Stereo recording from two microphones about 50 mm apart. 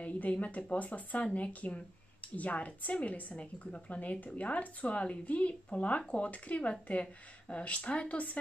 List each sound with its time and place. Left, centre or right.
0.0 s speech: left